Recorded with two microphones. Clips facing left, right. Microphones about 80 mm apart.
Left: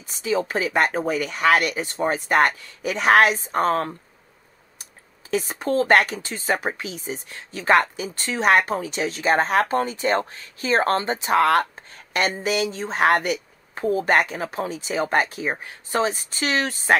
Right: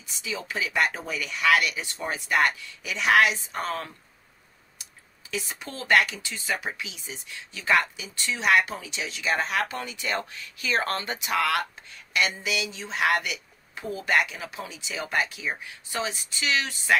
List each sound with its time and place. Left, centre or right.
0.0 s speech: left
5.3 s speech: left